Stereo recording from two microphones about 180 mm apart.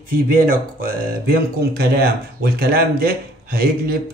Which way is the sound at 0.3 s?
55° right (ahead or behind).